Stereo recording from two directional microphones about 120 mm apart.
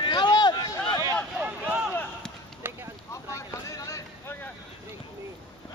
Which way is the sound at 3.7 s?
30° left (ahead or behind).